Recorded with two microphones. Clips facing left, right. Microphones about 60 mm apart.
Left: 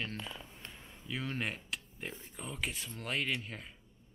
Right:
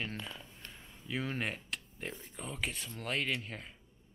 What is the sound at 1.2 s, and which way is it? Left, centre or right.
Speech, centre.